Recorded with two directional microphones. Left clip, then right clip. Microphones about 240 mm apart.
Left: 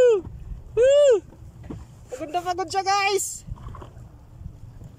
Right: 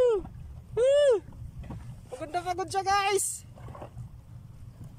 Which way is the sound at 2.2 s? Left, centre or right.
Centre.